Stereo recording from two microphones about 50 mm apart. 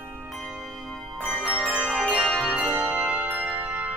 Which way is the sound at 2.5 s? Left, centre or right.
Right.